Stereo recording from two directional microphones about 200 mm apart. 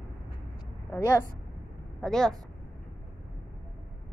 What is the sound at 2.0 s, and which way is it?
Speech, centre (ahead or behind).